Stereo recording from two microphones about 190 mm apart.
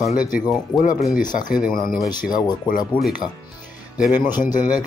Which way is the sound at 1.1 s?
45° left (ahead or behind).